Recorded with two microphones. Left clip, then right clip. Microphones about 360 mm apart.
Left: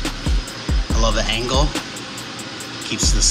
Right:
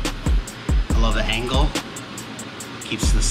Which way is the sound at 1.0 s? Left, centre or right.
Centre.